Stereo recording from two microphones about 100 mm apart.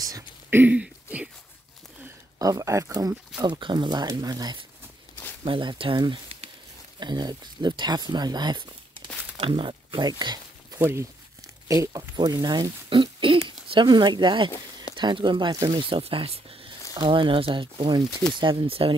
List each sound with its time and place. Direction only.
0.5 s a sound: 20° right (ahead or behind)
0.7 s a sound: 10° right (ahead or behind)
2.3 s speech: 35° right (ahead or behind)
3.4 s speech: 50° right (ahead or behind)
5.4 s speech: 55° right (ahead or behind)
9.4 s speech: 60° right (ahead or behind); by 10.8 s 45° right (ahead or behind)
10.8 s speech: 25° right (ahead or behind)
12.2 s speech: 45° right (ahead or behind)
15.8 s speech: 65° right (ahead or behind)